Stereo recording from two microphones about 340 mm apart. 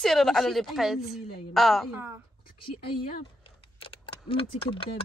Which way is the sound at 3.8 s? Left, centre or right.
Centre.